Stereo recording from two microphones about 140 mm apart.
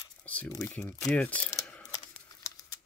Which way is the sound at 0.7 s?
10° left (ahead or behind).